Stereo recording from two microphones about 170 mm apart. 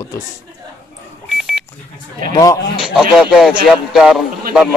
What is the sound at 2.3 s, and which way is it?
Speech, 20° left (ahead or behind).